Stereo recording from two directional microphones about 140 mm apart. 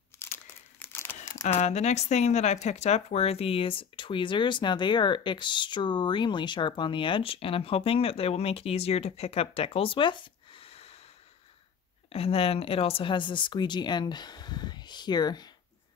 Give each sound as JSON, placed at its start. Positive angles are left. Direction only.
{"t": 0.2, "sound": "crumpling", "side_deg": 15}
{"t": 1.4, "sound": "speech", "side_deg": 55}
{"t": 12.1, "sound": "speech", "side_deg": 45}